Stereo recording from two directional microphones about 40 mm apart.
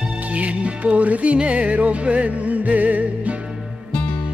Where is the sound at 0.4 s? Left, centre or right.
Right.